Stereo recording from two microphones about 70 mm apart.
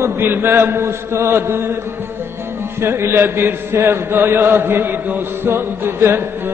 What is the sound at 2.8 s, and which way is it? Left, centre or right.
Chant, right.